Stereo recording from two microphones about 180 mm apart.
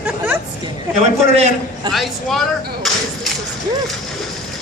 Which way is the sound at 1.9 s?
Centre (ahead or behind).